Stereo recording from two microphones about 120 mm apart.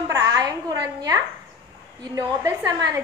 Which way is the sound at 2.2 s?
20° right (ahead or behind).